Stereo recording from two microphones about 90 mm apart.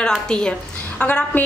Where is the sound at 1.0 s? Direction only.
20° left (ahead or behind).